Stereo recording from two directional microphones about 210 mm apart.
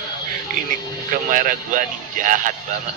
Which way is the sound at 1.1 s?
40° right (ahead or behind).